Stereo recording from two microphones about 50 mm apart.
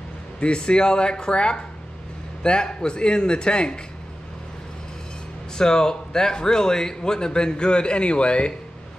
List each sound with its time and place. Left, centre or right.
0.4 s a man's voice: centre
5.6 s a man's voice: centre